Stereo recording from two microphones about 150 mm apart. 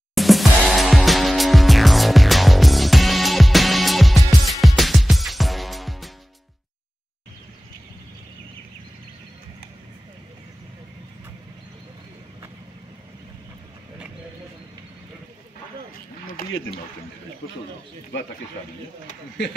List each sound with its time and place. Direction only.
0.1 s music: centre (ahead or behind)
16.4 s a sound: 75° left (ahead or behind)
19.0 s speech: 90° left